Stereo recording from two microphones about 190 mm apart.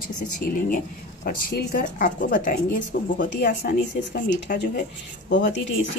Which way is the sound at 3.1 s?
70° left (ahead or behind).